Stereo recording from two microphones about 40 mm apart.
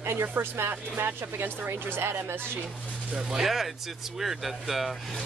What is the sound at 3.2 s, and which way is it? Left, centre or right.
Speech, centre.